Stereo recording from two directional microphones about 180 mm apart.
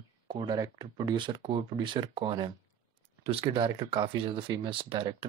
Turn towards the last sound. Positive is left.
turn(degrees=-25)  # may be behind; listen again after turning